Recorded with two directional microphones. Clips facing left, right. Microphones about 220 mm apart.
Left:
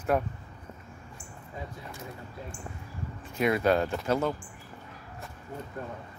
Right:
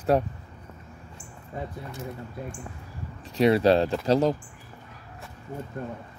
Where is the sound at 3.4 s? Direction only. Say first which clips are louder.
Right 5 dB; 30° right (ahead or behind).